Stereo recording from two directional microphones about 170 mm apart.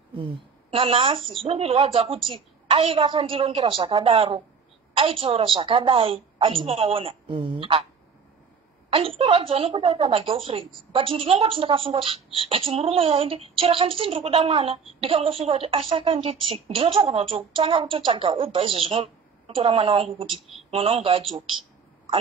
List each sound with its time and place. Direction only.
0.1 s speech: 30° right (ahead or behind)
8.9 s speech: 35° right (ahead or behind)